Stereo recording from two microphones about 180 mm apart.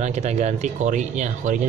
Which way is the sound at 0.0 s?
40° right (ahead or behind).